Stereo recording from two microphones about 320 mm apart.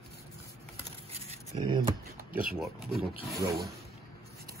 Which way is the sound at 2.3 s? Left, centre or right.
Right.